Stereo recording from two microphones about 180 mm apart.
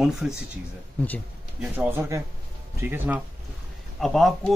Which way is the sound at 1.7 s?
15° right (ahead or behind).